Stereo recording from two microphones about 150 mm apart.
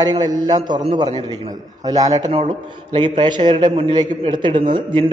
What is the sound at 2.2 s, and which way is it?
A man's voice, 40° right (ahead or behind).